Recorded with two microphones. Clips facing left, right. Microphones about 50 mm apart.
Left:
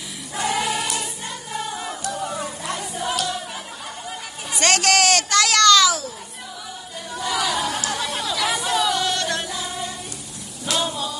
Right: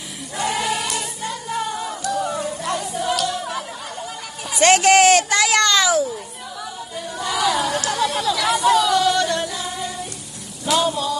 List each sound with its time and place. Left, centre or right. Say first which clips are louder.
0.4 s music: right 1 dB; centre
4.6 s speech: right 6 dB; centre
7.2 s a sound: right 3 dB; centre
7.8 s chatter: right 5 dB; centre
10.6 s music: right 5 dB; centre